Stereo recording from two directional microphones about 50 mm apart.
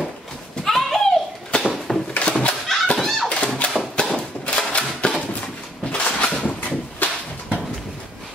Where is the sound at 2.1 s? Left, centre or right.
Left.